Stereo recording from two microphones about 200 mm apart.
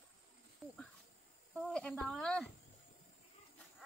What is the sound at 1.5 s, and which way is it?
Speech, 5° left (ahead or behind).